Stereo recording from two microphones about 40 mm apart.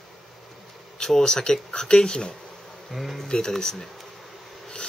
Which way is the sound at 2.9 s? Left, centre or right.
Centre.